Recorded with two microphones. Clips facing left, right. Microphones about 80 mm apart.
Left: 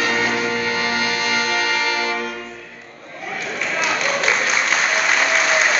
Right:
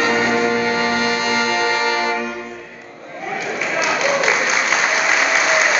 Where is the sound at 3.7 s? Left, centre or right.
Centre.